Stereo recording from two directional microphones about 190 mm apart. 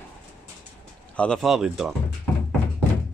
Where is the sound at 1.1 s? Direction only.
5° left (ahead or behind).